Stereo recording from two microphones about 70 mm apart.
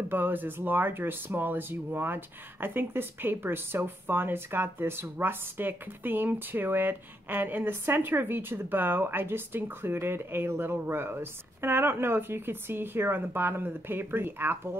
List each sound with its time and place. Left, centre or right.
0.1 s speech: right